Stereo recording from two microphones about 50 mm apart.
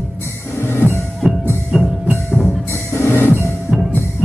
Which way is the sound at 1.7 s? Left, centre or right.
Right.